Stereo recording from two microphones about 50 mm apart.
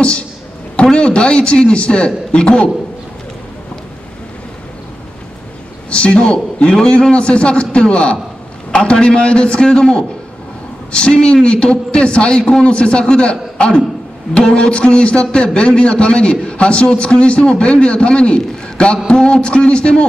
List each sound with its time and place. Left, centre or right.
0.9 s a man's voice: centre
5.9 s a man's voice: left